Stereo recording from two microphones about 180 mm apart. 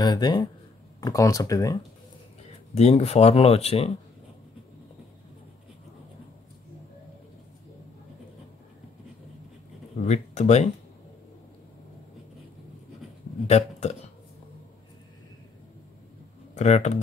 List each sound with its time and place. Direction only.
0.0 s speech: 25° left (ahead or behind)
2.7 s speech: 35° left (ahead or behind)
10.0 s speech: 40° left (ahead or behind)
13.5 s speech: 35° left (ahead or behind)
16.5 s speech: 40° left (ahead or behind)